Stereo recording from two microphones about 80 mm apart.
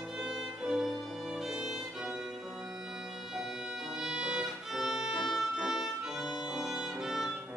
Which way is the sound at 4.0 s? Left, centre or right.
Centre.